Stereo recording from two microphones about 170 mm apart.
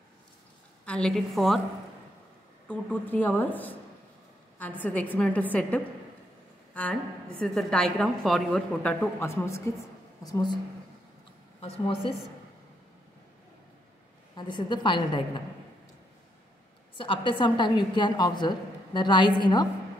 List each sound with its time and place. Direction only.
0.8 s a woman's voice: 5° left (ahead or behind)
2.7 s speech: 10° left (ahead or behind)
6.7 s a sound: 10° left (ahead or behind)
7.3 s a woman's voice: 5° left (ahead or behind); by 10.6 s 25° left (ahead or behind)
11.6 s a woman's voice: 35° left (ahead or behind)
14.3 s a woman's voice: 25° left (ahead or behind)
16.9 s a woman's voice: 30° left (ahead or behind)